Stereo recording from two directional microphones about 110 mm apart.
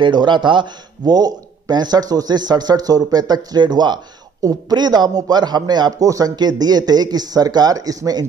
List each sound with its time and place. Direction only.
0.0 s speech: 45° right (ahead or behind)